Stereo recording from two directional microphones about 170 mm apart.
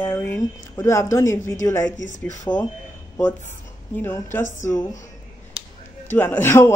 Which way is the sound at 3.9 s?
10° left (ahead or behind).